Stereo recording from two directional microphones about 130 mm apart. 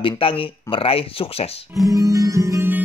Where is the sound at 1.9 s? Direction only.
25° right (ahead or behind).